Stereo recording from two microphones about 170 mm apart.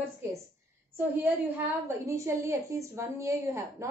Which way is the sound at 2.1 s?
15° right (ahead or behind).